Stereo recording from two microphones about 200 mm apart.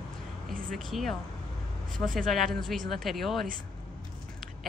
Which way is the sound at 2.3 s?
Centre (ahead or behind).